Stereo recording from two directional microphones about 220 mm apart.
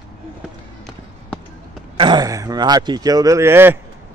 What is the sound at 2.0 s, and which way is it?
Speech, 20° right (ahead or behind).